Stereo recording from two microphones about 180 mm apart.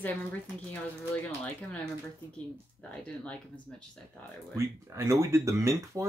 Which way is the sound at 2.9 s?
5° left (ahead or behind).